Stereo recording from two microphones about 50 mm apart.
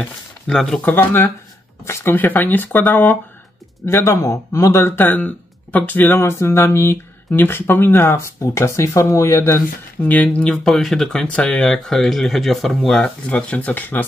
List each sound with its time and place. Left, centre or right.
0.0 s speech: centre
0.8 s speech: left
3.8 s speech: left
5.1 s speech: left
6.1 s speech: left
7.3 s speech: left
8.4 s speech: left
10.2 s speech: left
10.5 s speech: centre
11.2 s speech: left; by 13.1 s centre
13.3 s speech: left